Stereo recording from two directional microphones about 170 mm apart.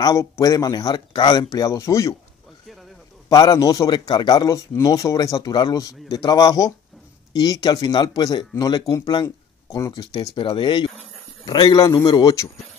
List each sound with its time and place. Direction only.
0.0 s speech: 20° left (ahead or behind)
3.3 s speech: 20° left (ahead or behind)